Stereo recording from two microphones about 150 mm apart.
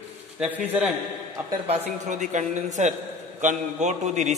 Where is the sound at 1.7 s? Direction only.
55° right (ahead or behind).